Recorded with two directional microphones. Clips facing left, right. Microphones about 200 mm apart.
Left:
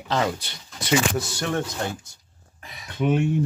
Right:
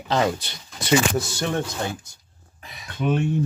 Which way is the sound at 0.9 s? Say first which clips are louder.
Right 2 dB; 25° right (ahead or behind).